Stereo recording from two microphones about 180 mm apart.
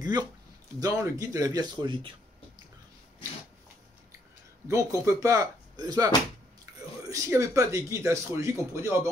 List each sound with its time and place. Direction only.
0.7 s speech: 20° right (ahead or behind)
4.6 s speech: 15° right (ahead or behind)